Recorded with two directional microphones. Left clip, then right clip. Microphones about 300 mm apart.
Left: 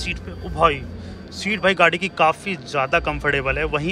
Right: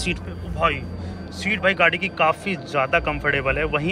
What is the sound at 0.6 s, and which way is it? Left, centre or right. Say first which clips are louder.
Speech: left 4 dB; centre.